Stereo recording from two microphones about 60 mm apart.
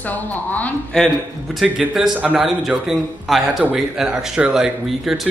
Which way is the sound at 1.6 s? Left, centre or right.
Centre.